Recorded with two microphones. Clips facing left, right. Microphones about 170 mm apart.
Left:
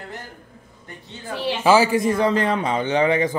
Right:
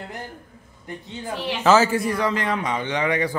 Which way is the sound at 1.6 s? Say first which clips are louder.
Left 1 dB; 10° left (ahead or behind).